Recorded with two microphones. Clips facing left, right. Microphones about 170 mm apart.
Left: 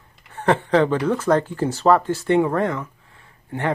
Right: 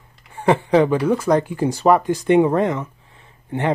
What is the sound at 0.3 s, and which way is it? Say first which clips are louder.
Speech: right 2 dB; 10° right (ahead or behind).